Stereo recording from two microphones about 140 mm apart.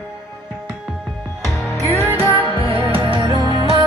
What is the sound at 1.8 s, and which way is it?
Music, 20° left (ahead or behind).